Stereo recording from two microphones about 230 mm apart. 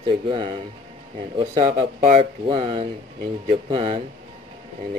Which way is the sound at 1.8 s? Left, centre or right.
Right.